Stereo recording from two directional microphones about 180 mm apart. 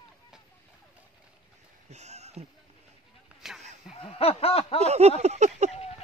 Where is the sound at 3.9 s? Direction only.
30° left (ahead or behind).